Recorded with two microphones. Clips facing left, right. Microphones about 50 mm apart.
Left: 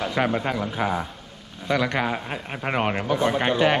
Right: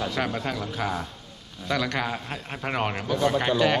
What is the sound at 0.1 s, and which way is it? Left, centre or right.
A man's voice, left.